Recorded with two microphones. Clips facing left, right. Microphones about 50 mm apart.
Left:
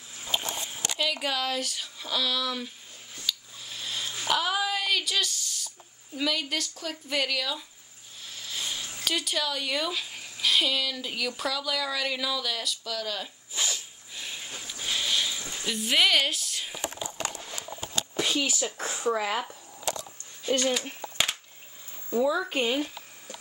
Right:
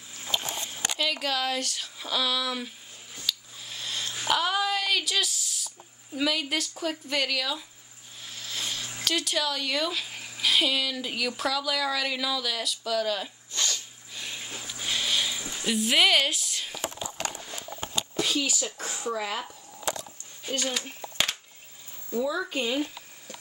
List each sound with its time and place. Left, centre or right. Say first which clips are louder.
0.3 s a sound: even; centre
2.0 s a woman's voice: right 1 dB; centre
3.3 s a sound: even; centre
6.1 s a woman's voice: right 2 dB; centre
7.1 s a woman's voice: left 2 dB; centre
13.5 s zipper: left 1 dB; centre
18.1 s speech: even; centre
22.2 s speech: left 3 dB; centre
22.5 s speech: left 2 dB; left